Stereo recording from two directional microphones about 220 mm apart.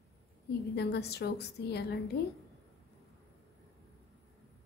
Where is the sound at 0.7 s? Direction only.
45° left (ahead or behind).